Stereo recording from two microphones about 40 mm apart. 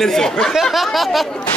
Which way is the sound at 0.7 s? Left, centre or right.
Centre.